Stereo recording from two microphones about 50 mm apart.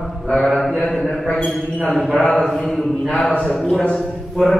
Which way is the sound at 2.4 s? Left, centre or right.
Centre.